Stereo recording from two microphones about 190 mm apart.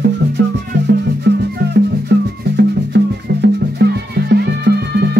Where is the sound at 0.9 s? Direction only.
60° right (ahead or behind).